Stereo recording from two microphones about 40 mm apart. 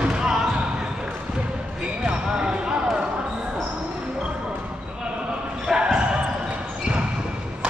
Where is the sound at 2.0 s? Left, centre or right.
Right.